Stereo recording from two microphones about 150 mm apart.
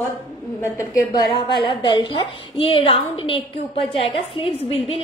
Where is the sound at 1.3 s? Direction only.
35° left (ahead or behind).